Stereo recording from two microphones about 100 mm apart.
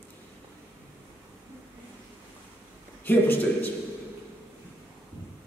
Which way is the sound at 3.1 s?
20° left (ahead or behind).